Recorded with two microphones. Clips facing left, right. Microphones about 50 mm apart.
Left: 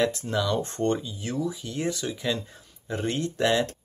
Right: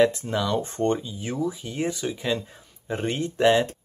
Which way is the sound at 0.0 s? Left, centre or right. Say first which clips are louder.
Right 4 dB; centre.